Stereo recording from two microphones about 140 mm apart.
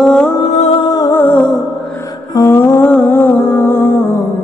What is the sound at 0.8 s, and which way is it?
Music, 25° left (ahead or behind).